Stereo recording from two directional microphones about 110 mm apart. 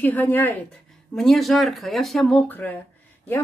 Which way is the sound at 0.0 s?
15° left (ahead or behind).